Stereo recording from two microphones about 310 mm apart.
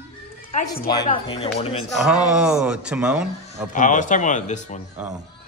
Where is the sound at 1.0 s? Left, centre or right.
Centre.